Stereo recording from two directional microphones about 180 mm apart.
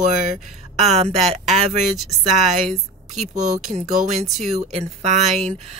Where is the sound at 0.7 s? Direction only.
35° right (ahead or behind).